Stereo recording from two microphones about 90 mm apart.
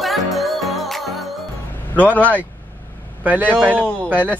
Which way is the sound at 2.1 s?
20° left (ahead or behind).